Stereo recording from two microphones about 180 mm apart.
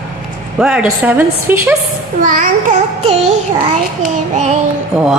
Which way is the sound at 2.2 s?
50° right (ahead or behind).